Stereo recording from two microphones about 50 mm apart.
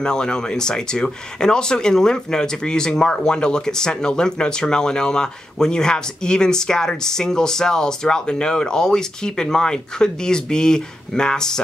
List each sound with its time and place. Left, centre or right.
0.0 s speech: centre